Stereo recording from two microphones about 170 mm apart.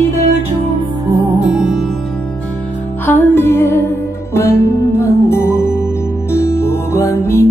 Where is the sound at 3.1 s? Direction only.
15° left (ahead or behind).